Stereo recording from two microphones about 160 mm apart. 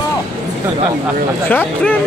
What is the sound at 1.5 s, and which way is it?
Speech, 10° left (ahead or behind).